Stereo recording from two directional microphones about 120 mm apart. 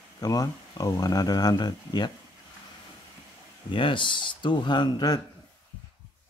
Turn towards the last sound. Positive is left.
turn(degrees=35)  # may be behind; listen again after turning